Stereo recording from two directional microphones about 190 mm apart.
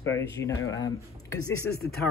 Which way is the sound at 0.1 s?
15° left (ahead or behind).